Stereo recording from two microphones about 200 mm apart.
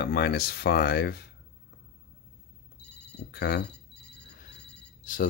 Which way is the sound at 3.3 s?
55° left (ahead or behind).